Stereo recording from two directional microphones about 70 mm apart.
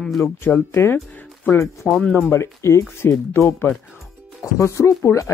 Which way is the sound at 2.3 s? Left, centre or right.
Left.